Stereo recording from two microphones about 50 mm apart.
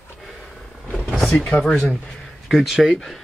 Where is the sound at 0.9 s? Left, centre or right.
Centre.